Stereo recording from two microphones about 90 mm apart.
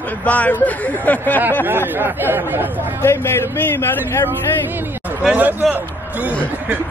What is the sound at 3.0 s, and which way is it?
Speech, 25° left (ahead or behind).